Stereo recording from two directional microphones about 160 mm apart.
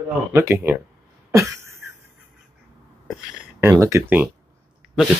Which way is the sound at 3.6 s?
20° right (ahead or behind).